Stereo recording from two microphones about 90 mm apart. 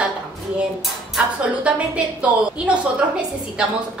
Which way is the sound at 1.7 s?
10° right (ahead or behind).